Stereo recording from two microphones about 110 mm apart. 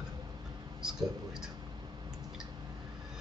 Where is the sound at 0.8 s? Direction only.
5° right (ahead or behind).